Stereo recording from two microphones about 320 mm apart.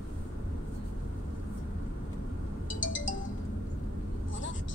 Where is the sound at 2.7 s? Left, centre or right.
Left.